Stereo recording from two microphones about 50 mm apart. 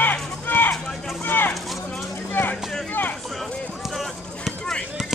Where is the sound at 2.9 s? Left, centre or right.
Left.